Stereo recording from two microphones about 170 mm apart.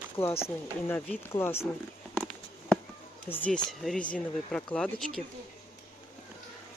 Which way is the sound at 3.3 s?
10° left (ahead or behind).